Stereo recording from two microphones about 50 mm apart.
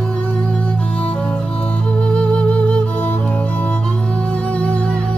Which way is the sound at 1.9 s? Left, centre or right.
Centre.